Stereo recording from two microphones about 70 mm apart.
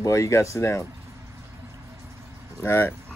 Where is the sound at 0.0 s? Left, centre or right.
Left.